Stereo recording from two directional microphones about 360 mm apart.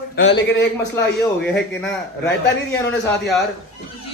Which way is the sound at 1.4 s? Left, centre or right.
Left.